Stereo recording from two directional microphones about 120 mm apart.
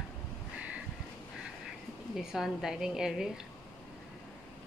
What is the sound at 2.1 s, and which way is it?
A woman's voice, centre (ahead or behind).